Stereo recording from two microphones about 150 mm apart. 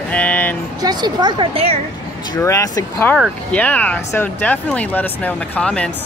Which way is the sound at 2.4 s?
20° left (ahead or behind).